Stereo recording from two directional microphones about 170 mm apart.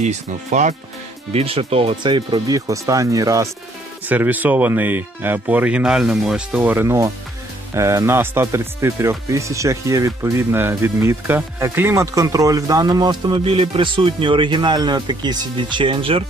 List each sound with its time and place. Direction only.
0.0 s speech: 45° right (ahead or behind)
1.3 s speech: 35° right (ahead or behind)